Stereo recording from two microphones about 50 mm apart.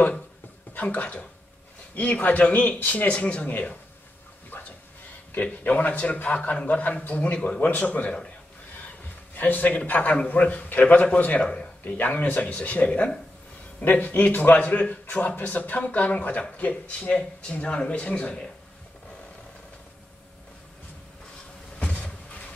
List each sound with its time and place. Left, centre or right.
0.7 s a man's voice: left
3.4 s a man's voice: left
5.3 s a man's voice: left
9.3 s a man's voice: left; by 18.5 s centre